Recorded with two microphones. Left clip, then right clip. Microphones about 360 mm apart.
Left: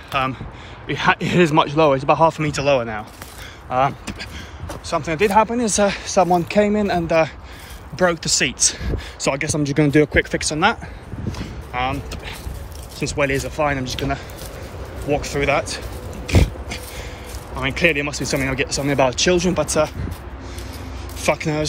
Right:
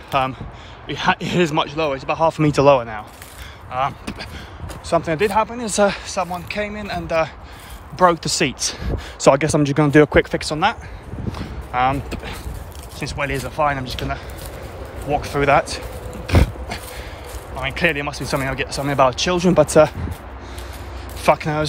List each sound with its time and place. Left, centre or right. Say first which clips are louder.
0.1 s speech: right 2 dB; centre
2.3 s speech: right 4 dB; centre
4.0 s speech: even; centre
8.0 s speech: right 2 dB; centre
11.3 s a sound: right 4 dB; centre
13.0 s speech: left 4 dB; centre
15.1 s speech: right 4 dB; centre
17.6 s speech: left 2 dB; centre
21.2 s speech: right 3 dB; centre